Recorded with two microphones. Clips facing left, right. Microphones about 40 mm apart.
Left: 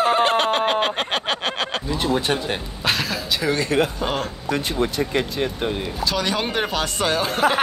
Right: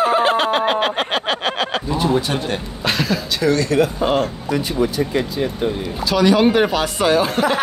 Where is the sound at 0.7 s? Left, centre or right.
Centre.